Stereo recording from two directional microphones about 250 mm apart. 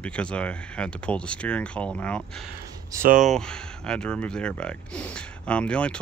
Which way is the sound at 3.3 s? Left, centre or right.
Centre.